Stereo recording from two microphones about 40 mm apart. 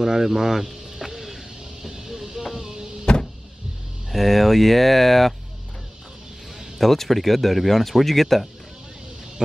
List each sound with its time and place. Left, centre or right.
0.0 s vehicle: centre
2.0 s a sound: centre
4.1 s speech: centre
6.8 s speech: centre